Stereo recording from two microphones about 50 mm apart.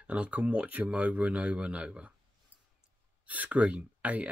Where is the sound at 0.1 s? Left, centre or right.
Right.